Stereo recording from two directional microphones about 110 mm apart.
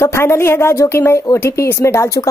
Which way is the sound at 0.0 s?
25° left (ahead or behind).